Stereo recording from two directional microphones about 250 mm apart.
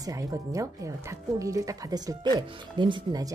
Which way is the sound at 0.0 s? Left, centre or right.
Centre.